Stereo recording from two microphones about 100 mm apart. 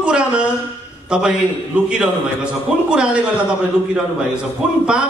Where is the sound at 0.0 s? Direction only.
10° right (ahead or behind).